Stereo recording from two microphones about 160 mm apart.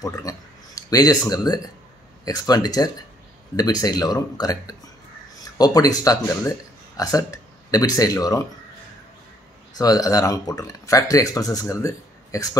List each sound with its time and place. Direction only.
0.0 s a sound: 25° left (ahead or behind)
1.3 s speech: 25° left (ahead or behind)
9.8 s speech: 20° left (ahead or behind)